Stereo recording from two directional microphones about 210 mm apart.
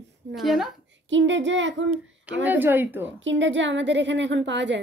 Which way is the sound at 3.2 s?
60° right (ahead or behind).